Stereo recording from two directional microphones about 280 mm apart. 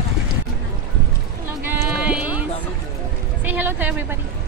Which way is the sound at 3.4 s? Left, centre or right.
Centre.